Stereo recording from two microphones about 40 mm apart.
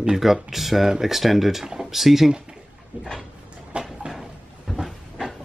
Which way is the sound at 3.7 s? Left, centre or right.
Right.